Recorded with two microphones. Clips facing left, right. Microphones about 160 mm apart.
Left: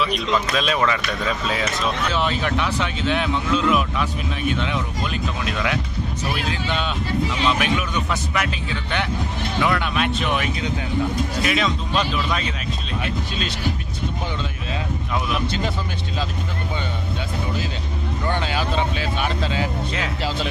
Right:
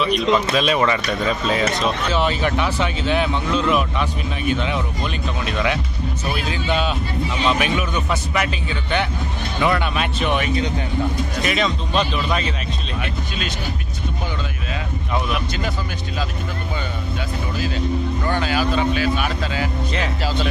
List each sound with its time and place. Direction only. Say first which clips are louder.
0.6 s speech: right 3 dB; 5° right (ahead or behind)
18.3 s speech: right 3 dB; 25° left (ahead or behind)